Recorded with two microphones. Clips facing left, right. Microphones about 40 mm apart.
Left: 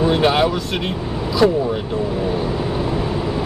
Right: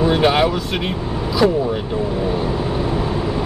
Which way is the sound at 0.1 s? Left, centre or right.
Centre.